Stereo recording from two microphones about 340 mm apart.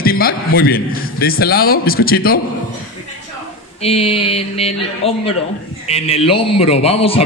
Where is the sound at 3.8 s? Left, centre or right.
Centre.